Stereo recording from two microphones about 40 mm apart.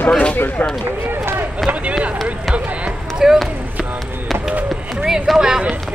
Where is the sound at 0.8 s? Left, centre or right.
Right.